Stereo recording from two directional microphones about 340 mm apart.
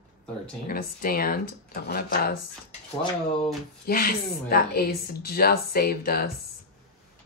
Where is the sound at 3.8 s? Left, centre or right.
Left.